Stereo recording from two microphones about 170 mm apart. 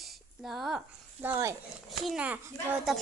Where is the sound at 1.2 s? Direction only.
15° right (ahead or behind).